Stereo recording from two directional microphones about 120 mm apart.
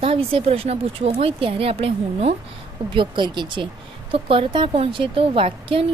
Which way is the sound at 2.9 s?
40° right (ahead or behind).